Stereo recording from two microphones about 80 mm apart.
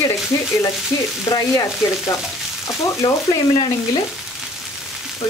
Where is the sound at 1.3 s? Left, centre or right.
Left.